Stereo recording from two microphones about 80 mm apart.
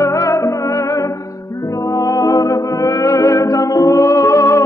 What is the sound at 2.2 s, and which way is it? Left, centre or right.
Music, left.